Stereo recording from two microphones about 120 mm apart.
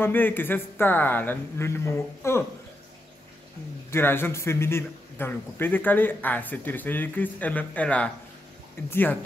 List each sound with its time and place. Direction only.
0.0 s a man's voice: 15° left (ahead or behind)
3.9 s a man's voice: 20° left (ahead or behind)